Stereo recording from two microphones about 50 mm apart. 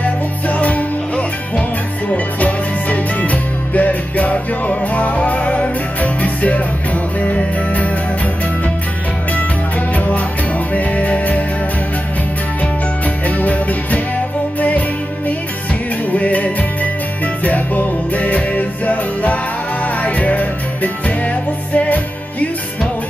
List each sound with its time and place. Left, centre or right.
0.0 s music: left
9.9 s music: left
13.3 s music: left
16.1 s music: left